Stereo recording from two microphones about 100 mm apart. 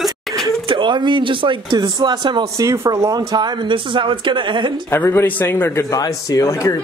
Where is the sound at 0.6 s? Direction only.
55° right (ahead or behind).